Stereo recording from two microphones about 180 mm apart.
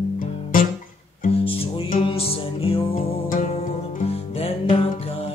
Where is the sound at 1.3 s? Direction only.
30° left (ahead or behind).